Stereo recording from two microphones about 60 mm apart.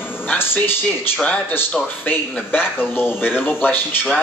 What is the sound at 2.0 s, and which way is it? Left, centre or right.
A man's voice, left.